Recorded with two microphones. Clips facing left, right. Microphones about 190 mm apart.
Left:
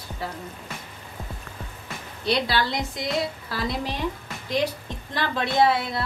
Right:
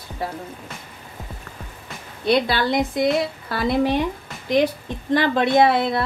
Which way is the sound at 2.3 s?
55° right (ahead or behind).